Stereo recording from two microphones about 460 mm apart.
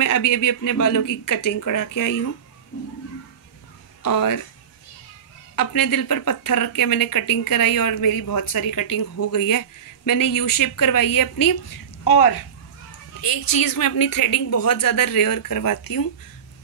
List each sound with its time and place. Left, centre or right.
0.0 s speech: left
4.0 s speech: left
5.6 s a woman's voice: left